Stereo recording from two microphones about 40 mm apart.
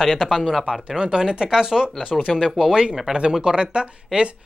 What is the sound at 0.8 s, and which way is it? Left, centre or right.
Speech, right.